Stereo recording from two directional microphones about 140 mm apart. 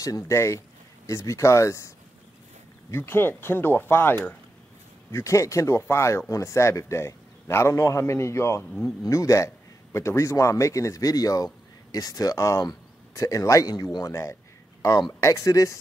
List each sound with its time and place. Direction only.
0.0 s speech: 20° left (ahead or behind)
2.9 s speech: 15° left (ahead or behind)